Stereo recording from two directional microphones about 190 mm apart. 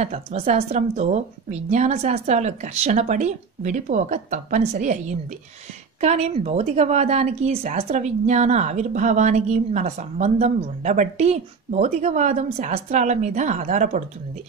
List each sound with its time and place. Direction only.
0.0 s a woman's voice: 35° right (ahead or behind)